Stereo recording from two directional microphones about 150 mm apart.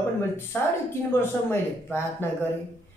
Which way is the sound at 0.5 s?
10° left (ahead or behind).